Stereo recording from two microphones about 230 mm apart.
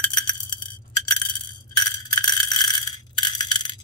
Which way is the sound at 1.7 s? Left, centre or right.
Centre.